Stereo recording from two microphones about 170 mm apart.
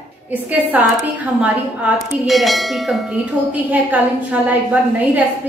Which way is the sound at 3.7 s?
10° right (ahead or behind).